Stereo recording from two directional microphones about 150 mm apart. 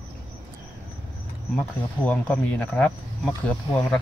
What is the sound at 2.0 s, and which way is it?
Speech, 10° left (ahead or behind).